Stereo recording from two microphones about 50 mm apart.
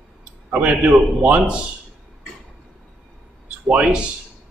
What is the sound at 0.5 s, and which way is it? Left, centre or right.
Speech, right.